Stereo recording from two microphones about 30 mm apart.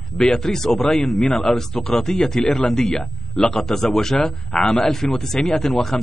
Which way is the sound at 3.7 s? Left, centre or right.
Centre.